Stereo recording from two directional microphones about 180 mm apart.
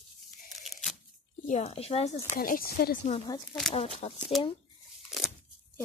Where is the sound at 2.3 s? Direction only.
50° left (ahead or behind).